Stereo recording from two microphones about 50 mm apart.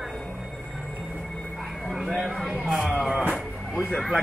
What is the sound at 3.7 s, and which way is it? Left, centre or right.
Speech, centre.